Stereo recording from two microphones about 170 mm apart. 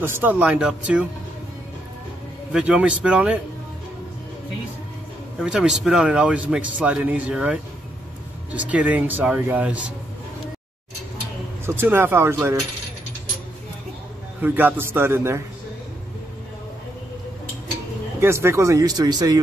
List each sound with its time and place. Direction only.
0.0 s speech: 10° right (ahead or behind)
2.5 s speech: 5° right (ahead or behind)
5.4 s speech: 5° right (ahead or behind)
11.6 s speech: 15° right (ahead or behind)
14.4 s speech: 10° right (ahead or behind)
18.2 s speech: 15° right (ahead or behind)